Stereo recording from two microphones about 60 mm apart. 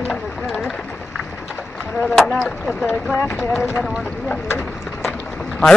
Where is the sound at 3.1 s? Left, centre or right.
Left.